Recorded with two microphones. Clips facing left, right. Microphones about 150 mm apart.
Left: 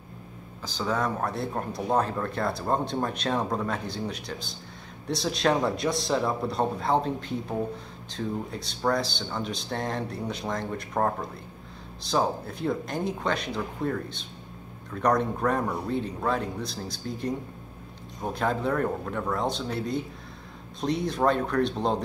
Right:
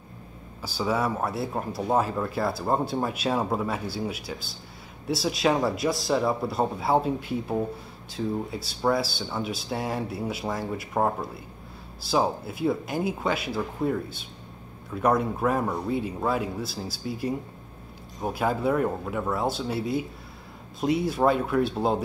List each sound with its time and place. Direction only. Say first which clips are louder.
0.6 s a man's voice: right 2 dB; 10° right (ahead or behind)